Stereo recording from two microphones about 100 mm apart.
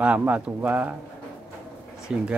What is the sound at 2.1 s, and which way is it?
Speech, 5° right (ahead or behind).